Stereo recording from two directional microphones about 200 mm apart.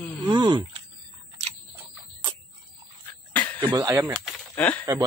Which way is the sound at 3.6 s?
15° right (ahead or behind).